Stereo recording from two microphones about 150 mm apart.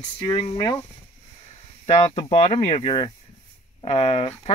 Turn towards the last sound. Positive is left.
turn(degrees=45)  # may be behind; listen again after turning